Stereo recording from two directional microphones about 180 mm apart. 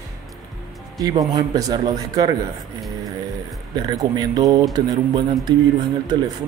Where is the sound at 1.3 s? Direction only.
20° right (ahead or behind).